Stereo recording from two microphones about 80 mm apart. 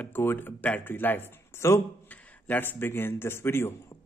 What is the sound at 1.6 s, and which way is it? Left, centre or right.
Speech, left.